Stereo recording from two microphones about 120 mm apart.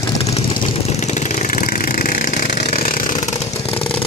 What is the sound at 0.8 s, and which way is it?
Vehicle, 70° left (ahead or behind).